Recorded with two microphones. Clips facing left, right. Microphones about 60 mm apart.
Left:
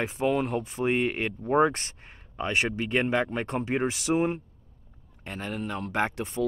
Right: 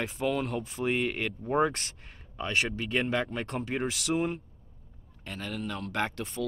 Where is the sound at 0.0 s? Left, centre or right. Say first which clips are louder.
Left 4 dB; left.